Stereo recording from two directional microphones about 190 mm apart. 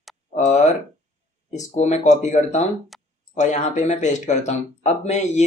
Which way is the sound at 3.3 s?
40° left (ahead or behind).